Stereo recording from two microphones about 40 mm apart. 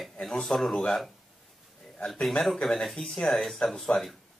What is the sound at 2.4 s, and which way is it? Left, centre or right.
Speech, centre.